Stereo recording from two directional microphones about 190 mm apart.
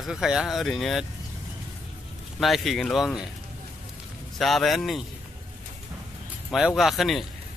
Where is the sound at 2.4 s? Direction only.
Centre (ahead or behind).